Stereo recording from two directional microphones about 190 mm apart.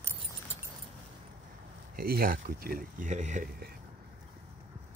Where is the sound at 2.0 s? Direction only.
50° right (ahead or behind).